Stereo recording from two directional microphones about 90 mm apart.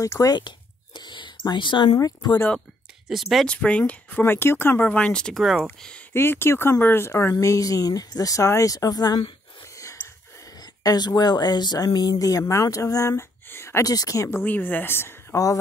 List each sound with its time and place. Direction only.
0.0 s speech: 40° left (ahead or behind)
0.4 s a sound: 60° left (ahead or behind)
2.0 s speech: 40° left (ahead or behind)
3.1 s speech: centre (ahead or behind)
3.4 s speech: 15° left (ahead or behind)
4.8 s speech: 15° left (ahead or behind)
6.1 s speech: 25° left (ahead or behind); by 9.2 s 45° left (ahead or behind)
10.6 s speech: 45° left (ahead or behind); by 13.8 s 30° left (ahead or behind)
13.8 s speech: 40° left (ahead or behind)
14.4 s speech: 20° left (ahead or behind)